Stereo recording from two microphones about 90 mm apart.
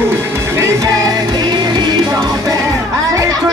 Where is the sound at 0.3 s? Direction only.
30° right (ahead or behind).